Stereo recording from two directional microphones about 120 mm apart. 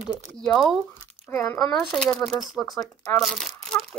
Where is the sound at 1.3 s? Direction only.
20° left (ahead or behind).